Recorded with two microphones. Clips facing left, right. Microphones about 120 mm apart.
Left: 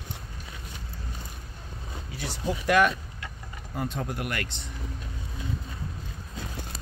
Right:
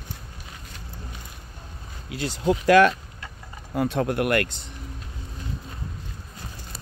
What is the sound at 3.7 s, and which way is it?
Speech, 80° right.